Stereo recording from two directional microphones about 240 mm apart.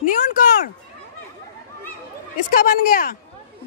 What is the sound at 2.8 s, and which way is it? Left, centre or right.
Speech, left.